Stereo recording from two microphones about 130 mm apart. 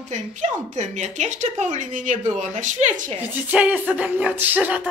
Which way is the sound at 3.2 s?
10° right (ahead or behind).